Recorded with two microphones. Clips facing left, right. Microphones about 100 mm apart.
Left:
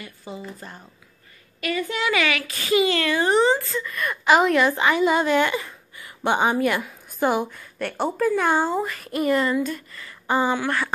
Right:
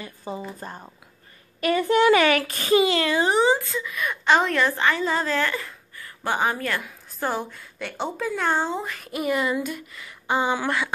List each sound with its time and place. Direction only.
0.3 s a woman's voice: 35° right (ahead or behind)
2.8 s speech: 25° right (ahead or behind)
3.3 s a woman's voice: 5° right (ahead or behind)
10.5 s speech: 15° right (ahead or behind)